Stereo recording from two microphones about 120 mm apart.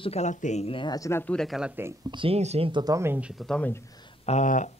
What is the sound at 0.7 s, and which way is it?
Speech, 45° left (ahead or behind).